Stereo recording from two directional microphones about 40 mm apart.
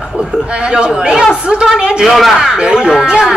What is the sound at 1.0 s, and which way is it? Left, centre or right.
A woman's voice, centre.